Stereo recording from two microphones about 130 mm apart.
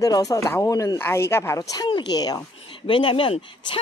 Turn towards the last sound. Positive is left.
turn(degrees=45)  # may be behind; listen again after turning